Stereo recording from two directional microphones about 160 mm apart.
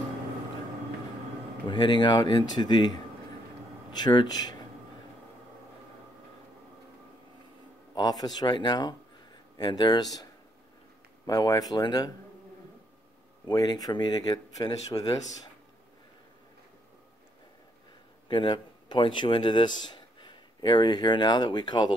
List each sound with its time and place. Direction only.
1.7 s speech: 30° left (ahead or behind)
7.9 s speech: 25° left (ahead or behind)
11.2 s speech: 25° left (ahead or behind)
13.5 s speech: 25° left (ahead or behind)
18.3 s a man's voice: 30° left (ahead or behind)